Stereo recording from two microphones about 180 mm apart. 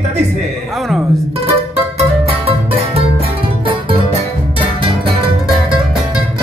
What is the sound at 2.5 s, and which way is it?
Music, 30° right (ahead or behind).